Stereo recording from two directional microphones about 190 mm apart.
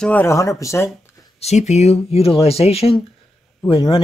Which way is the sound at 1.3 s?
35° left (ahead or behind).